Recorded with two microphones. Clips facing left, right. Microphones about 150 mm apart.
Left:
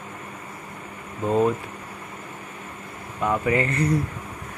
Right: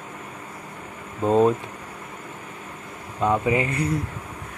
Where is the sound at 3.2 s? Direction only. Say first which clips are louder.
Right 1 dB; 20° right (ahead or behind).